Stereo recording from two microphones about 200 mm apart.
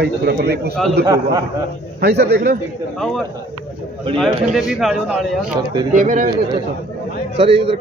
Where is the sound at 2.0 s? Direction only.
55° right (ahead or behind).